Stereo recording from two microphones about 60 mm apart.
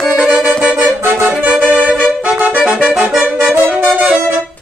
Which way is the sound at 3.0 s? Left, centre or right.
Right.